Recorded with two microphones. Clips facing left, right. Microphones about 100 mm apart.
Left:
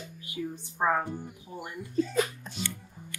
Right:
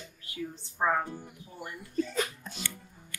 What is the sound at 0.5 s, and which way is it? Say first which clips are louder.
Speech: left 1 dB; 10° left (ahead or behind).